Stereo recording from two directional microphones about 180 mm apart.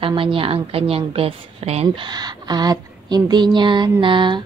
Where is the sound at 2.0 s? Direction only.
25° right (ahead or behind).